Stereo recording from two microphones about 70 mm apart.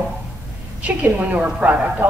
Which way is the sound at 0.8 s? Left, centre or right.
Right.